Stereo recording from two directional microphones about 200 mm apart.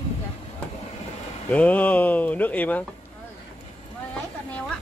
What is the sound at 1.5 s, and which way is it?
Speech, 5° left (ahead or behind).